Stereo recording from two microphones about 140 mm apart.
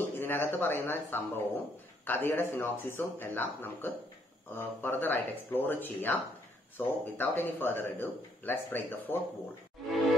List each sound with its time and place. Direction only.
0.2 s a man's voice: 15° left (ahead or behind)